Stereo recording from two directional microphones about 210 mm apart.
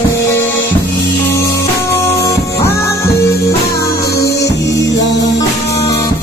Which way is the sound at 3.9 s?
50° left (ahead or behind).